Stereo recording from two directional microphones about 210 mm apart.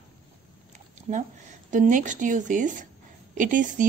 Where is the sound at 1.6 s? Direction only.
35° right (ahead or behind).